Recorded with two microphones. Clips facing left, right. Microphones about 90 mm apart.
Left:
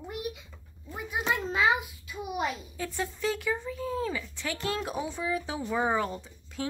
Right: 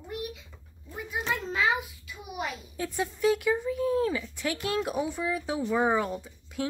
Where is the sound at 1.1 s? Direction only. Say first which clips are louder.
Left 1 dB; 15° left (ahead or behind).